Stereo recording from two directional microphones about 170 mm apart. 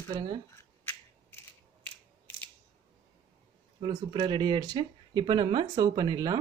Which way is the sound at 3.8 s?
30° right (ahead or behind).